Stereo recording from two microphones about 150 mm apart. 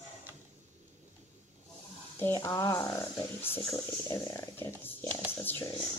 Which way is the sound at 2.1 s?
15° left (ahead or behind).